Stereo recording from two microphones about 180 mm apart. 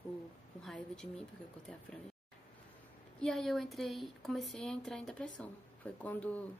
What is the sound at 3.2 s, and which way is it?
Speech, 5° left (ahead or behind).